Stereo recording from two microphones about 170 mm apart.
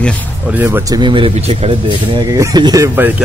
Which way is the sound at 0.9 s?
30° right (ahead or behind).